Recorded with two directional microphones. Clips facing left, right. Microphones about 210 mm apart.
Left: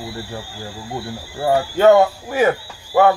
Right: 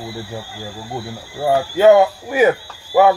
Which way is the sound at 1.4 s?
10° right (ahead or behind).